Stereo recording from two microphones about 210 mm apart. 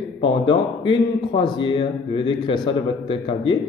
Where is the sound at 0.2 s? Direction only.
25° left (ahead or behind).